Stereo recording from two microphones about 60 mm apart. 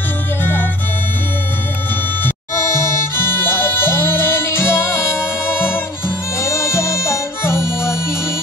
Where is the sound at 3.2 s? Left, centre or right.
Left.